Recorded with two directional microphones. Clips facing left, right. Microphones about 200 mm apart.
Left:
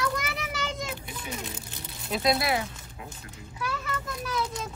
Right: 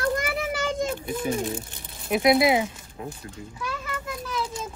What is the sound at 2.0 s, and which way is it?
Speech, 20° right (ahead or behind).